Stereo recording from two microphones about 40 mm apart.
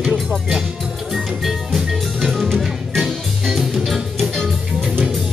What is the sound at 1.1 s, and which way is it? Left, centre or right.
Music, centre.